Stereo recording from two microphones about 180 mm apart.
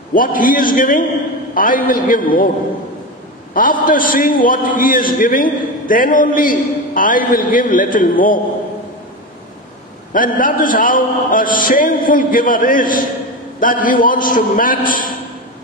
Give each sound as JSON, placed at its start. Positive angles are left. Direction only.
{"t": 0.1, "sound": "a man's voice", "side_deg": 50}
{"t": 3.5, "sound": "a man's voice", "side_deg": 50}
{"t": 10.1, "sound": "a man's voice", "side_deg": 50}